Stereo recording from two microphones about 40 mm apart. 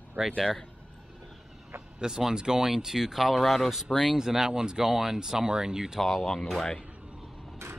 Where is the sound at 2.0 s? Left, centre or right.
Centre.